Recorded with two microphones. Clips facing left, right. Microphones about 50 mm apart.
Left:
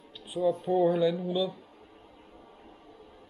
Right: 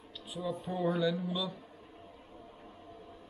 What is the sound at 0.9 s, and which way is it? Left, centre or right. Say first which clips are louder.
Speech: left 6 dB; left.